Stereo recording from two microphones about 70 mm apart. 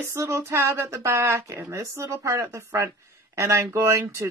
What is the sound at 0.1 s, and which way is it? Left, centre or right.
Speech, right.